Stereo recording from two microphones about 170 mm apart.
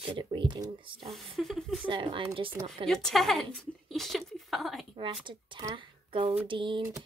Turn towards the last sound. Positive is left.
turn(degrees=-30)  # may be behind; listen again after turning